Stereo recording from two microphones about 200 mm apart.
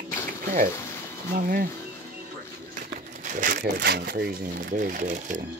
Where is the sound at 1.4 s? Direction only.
45° right (ahead or behind).